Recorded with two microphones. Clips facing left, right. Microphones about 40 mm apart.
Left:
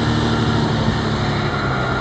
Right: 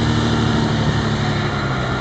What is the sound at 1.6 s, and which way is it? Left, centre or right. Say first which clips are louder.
Vehicle: left 1 dB; centre.